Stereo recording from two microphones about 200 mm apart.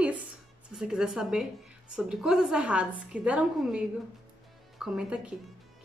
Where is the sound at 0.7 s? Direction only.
5° right (ahead or behind).